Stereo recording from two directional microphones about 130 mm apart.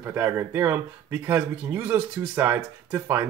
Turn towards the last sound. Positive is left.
turn(degrees=-20)  # may be behind; listen again after turning